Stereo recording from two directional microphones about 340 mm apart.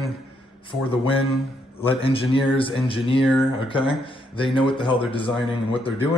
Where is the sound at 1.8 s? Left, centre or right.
Centre.